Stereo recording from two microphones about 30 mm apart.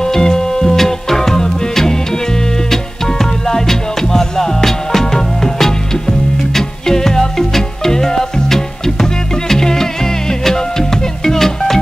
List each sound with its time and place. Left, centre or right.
0.0 s music: left